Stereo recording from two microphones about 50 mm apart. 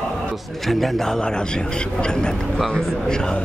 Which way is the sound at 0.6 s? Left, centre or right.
Centre.